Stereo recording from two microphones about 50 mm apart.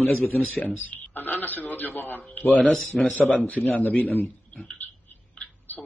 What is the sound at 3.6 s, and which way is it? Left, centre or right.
Speech, centre.